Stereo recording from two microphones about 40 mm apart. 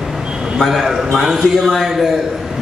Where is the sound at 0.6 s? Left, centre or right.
Centre.